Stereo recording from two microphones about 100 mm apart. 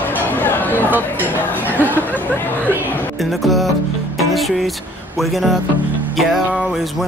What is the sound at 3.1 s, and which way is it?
Music, centre (ahead or behind).